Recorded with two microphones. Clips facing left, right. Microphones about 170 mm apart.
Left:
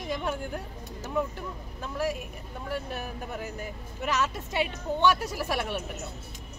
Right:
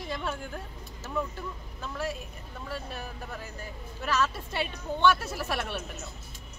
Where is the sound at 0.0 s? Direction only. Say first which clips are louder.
Left 3 dB; 15° left (ahead or behind).